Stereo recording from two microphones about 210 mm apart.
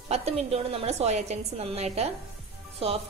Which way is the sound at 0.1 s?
30° right (ahead or behind).